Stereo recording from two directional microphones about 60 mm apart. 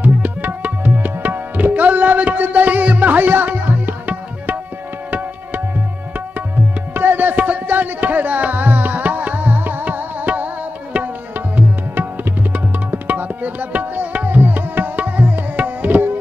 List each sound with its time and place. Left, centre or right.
0.0 s tabla: right
6.9 s music: right
12.5 s tabla: right